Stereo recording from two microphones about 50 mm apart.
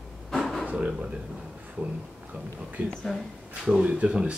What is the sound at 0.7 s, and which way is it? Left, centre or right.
Speech, right.